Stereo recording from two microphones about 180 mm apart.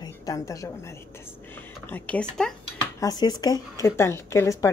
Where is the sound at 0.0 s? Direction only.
20° left (ahead or behind).